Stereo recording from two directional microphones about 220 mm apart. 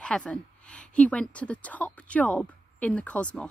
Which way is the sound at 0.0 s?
5° left (ahead or behind).